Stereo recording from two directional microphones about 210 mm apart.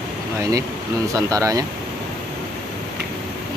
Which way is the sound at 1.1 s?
15° right (ahead or behind).